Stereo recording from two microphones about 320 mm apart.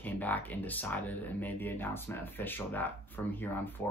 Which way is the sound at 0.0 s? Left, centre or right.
Centre.